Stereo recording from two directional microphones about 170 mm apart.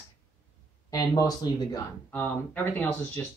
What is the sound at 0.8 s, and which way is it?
Speech, 20° left (ahead or behind).